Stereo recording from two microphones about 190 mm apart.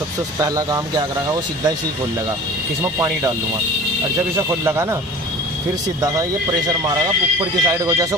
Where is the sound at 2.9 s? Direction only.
15° right (ahead or behind).